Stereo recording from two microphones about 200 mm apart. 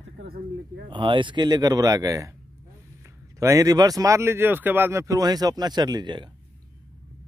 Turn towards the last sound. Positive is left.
turn(degrees=-20)  # may be behind; listen again after turning